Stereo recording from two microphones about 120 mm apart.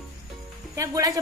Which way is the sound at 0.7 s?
30° right (ahead or behind).